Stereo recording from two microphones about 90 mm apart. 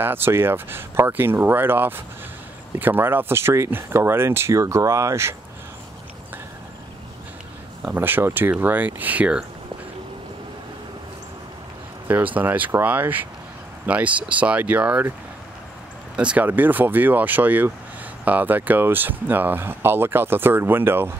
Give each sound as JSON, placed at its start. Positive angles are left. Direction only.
{"t": 0.0, "sound": "speech", "side_deg": -25}
{"t": 7.8, "sound": "speech", "side_deg": -20}
{"t": 12.4, "sound": "speech", "side_deg": -20}
{"t": 16.2, "sound": "speech", "side_deg": -15}